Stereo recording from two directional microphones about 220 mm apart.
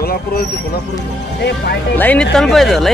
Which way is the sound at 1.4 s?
50° left (ahead or behind).